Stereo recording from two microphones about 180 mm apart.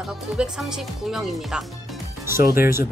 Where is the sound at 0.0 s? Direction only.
Centre (ahead or behind).